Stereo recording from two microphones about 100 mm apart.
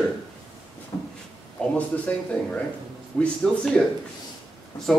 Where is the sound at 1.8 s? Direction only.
10° left (ahead or behind).